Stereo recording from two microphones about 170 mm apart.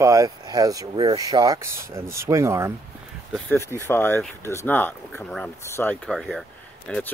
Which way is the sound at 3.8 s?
10° left (ahead or behind).